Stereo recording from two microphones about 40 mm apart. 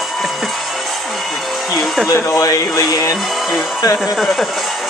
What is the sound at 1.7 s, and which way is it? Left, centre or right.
Speech, centre.